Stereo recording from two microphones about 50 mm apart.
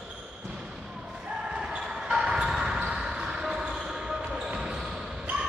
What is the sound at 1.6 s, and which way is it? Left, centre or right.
Basketball bounce, centre.